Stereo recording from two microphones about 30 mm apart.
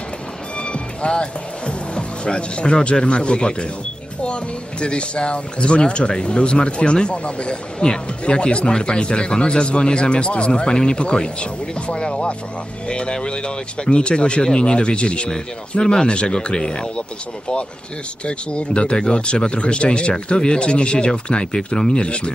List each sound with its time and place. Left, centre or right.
0.6 s music: left
3.1 s speech: left
7.8 s speech: left
18.2 s speech: left